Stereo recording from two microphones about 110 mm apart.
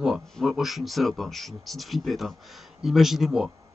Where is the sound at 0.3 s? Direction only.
Centre (ahead or behind).